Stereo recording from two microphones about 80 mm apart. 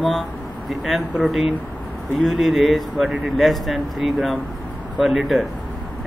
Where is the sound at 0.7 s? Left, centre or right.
Centre.